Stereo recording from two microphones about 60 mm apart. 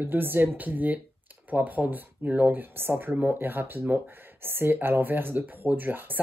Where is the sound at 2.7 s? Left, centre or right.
Right.